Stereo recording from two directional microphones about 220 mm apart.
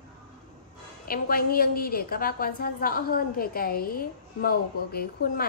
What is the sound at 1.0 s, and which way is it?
A woman's voice, 40° left (ahead or behind).